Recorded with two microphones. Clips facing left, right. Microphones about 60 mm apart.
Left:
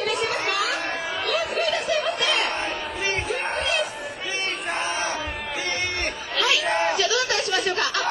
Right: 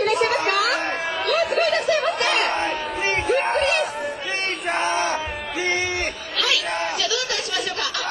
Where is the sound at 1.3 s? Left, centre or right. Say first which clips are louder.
Right 5 dB; right.